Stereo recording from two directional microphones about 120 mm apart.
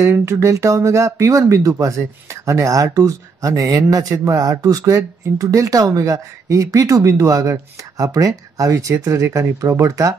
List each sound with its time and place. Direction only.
0.0 s speech: 20° right (ahead or behind)